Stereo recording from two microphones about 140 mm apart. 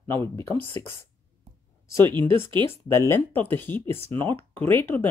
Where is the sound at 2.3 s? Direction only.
35° right (ahead or behind).